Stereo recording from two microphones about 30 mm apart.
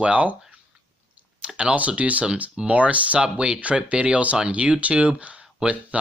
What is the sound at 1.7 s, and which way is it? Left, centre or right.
Speech, right.